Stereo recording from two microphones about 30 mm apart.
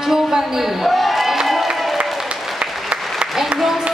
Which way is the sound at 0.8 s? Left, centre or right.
Centre.